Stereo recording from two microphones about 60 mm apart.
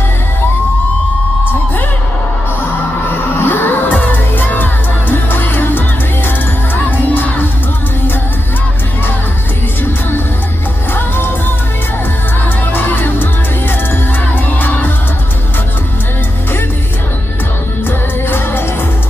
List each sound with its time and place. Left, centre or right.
3.3 s music: left
10.9 s music: left
12.7 s music: left
17.8 s music: left